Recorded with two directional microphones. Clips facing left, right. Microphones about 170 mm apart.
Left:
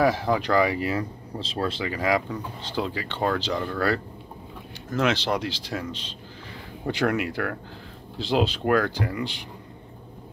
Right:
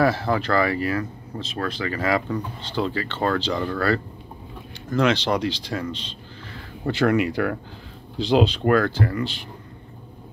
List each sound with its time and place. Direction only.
0.0 s speech: 10° left (ahead or behind); by 1.9 s 25° left (ahead or behind)
1.9 s speech: 10° left (ahead or behind)